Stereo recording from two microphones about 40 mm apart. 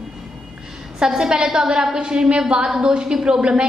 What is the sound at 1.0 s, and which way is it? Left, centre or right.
A woman's voice, centre.